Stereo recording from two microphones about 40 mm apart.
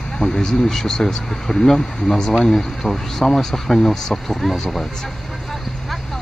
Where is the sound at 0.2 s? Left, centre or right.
Centre.